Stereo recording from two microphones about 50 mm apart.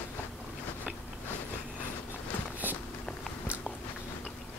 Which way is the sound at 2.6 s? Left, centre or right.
Right.